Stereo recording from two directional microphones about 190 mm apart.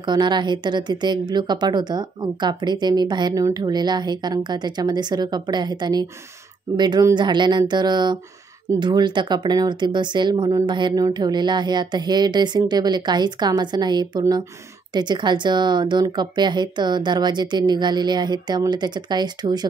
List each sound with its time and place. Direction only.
0.0 s a woman's voice: 25° right (ahead or behind)